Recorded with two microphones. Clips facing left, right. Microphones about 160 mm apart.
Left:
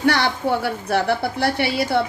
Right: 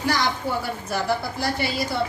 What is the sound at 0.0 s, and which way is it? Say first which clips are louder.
Speech: left 5 dB; 65° left (ahead or behind).